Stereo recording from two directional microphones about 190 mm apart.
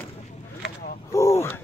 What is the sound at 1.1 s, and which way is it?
Speech, 15° left (ahead or behind).